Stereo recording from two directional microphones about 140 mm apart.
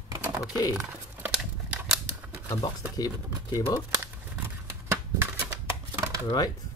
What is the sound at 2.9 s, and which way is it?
Speech, 25° left (ahead or behind).